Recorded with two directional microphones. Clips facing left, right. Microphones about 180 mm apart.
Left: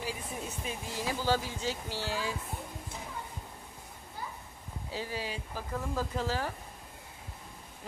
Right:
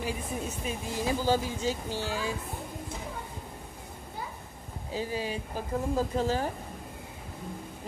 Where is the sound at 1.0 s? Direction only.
15° right (ahead or behind).